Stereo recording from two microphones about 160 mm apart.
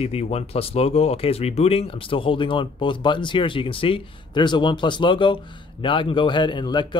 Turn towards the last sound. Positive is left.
turn(degrees=30)  # may be behind; listen again after turning